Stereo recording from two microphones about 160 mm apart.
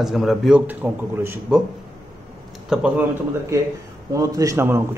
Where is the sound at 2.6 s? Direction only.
5° right (ahead or behind).